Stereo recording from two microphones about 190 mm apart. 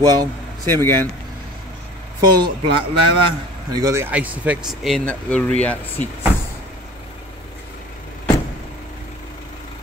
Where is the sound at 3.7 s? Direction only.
15° right (ahead or behind); by 6.0 s 5° left (ahead or behind).